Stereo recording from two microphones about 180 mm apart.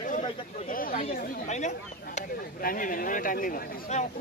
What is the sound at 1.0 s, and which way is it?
Chatter, 40° left (ahead or behind).